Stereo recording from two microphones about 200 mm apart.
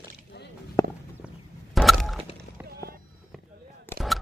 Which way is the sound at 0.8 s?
15° left (ahead or behind).